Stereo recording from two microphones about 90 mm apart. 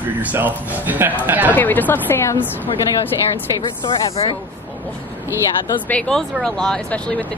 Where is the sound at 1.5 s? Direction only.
20° left (ahead or behind).